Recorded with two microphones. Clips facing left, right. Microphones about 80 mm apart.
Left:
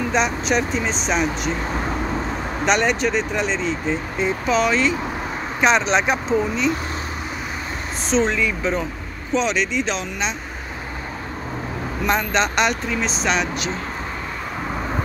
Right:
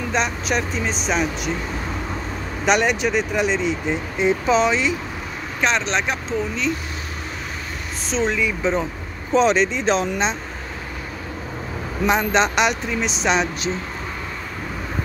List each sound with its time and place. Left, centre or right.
0.1 s speech: centre
2.6 s speech: centre
4.2 s speech: right
5.6 s speech: centre
8.1 s speech: centre
9.3 s speech: right
12.1 s speech: right